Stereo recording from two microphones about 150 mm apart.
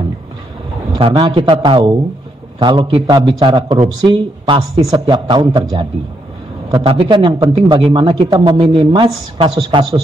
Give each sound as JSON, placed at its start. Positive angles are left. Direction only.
{"t": 0.9, "sound": "speech", "side_deg": -40}